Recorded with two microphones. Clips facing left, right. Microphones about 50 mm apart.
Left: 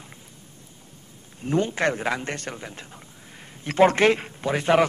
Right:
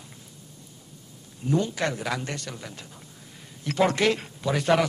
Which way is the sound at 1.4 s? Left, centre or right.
Left.